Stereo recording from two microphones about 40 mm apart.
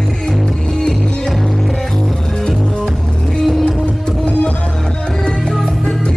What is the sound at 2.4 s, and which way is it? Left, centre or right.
Music, centre.